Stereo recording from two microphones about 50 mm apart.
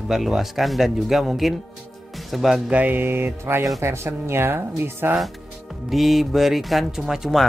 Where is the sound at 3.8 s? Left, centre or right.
Right.